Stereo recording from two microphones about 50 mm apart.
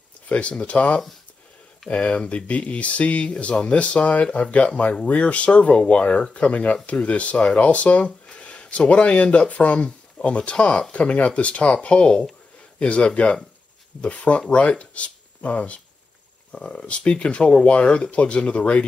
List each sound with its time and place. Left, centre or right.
0.3 s speech: left